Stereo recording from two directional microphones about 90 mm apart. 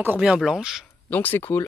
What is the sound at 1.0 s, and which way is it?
Speech, 20° left (ahead or behind).